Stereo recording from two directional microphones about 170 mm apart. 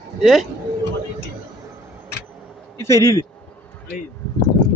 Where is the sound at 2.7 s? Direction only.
15° left (ahead or behind).